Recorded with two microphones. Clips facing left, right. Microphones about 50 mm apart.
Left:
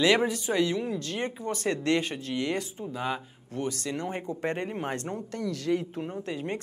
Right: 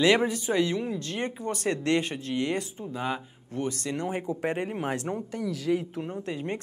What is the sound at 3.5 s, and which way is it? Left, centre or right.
Speech, right.